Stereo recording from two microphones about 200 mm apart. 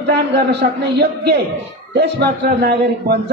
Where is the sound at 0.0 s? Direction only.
55° right (ahead or behind).